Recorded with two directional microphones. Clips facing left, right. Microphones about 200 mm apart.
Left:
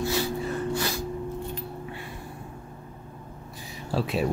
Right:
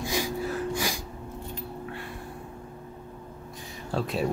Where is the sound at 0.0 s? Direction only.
15° right (ahead or behind).